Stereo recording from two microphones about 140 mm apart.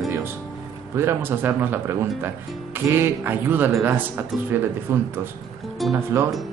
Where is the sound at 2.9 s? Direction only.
15° right (ahead or behind).